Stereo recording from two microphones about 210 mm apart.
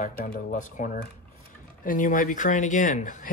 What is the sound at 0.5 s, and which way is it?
Speech, 35° left (ahead or behind).